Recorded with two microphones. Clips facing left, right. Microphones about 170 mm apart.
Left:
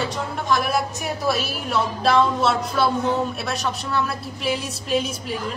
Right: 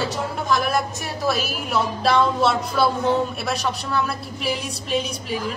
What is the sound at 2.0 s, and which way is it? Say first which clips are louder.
A woman's voice: even; centre (ahead or behind).